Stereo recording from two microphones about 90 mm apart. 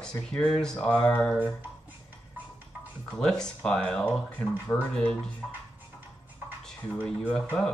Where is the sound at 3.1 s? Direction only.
5° left (ahead or behind).